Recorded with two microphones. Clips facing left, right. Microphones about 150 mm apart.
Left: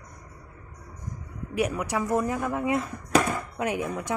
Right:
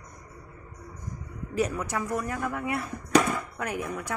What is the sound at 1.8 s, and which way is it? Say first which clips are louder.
Speech: left 4 dB; 15° left (ahead or behind).